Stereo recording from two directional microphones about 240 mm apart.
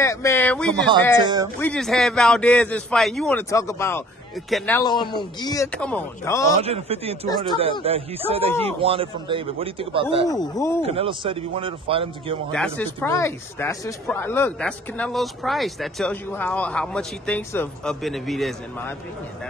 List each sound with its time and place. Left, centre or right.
0.0 s a sound: centre
1.2 s speech: centre
1.6 s speech: centre
4.8 s speech: centre
5.7 s speech: centre
6.6 s speech: right
10.2 s speech: centre
10.9 s speech: right
12.5 s speech: centre